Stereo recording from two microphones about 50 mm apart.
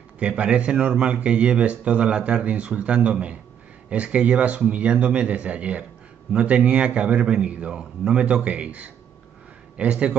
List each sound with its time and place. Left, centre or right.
0.2 s speech: right